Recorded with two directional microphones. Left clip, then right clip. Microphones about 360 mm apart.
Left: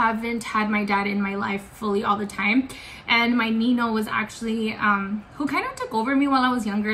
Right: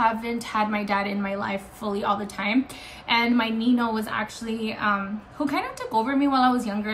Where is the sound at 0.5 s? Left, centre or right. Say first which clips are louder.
Left 1 dB; centre.